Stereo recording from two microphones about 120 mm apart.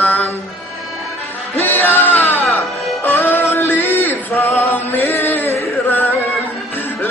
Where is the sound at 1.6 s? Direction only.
15° left (ahead or behind).